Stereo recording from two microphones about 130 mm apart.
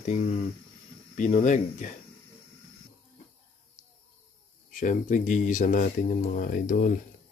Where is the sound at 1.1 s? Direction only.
75° left (ahead or behind).